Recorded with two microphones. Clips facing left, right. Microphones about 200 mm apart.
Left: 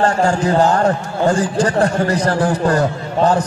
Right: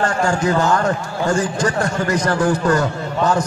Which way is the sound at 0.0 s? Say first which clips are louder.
Left 3 dB; 35° left (ahead or behind).